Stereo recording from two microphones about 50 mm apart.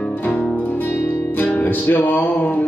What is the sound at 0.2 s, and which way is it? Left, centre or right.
Music, left.